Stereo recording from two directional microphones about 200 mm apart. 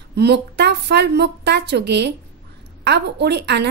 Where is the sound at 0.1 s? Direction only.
55° right (ahead or behind).